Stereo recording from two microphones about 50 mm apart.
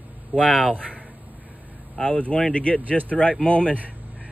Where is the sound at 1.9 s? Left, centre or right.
Left.